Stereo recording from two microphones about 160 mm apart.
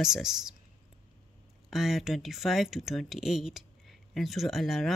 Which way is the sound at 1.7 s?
Centre (ahead or behind).